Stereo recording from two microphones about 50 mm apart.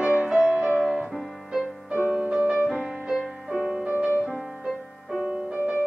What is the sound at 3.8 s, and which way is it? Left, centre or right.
Music, right.